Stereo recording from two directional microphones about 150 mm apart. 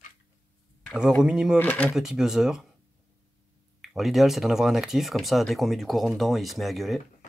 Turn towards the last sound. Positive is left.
turn(degrees=0)  # may be behind; listen again after turning